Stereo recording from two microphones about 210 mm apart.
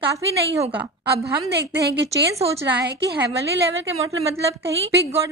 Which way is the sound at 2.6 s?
55° right (ahead or behind).